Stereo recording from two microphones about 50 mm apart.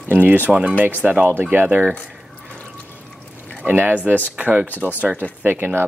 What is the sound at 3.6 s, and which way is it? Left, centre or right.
Speech, right.